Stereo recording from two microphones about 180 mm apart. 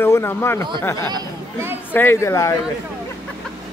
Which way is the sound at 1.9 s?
15° left (ahead or behind).